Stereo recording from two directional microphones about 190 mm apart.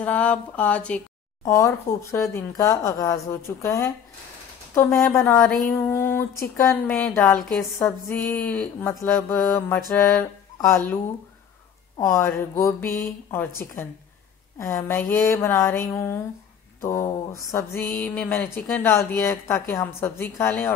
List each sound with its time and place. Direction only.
0.0 s speech: 5° left (ahead or behind)
5.7 s speech: 10° left (ahead or behind)
12.0 s speech: 15° left (ahead or behind)
14.6 s speech: 10° left (ahead or behind)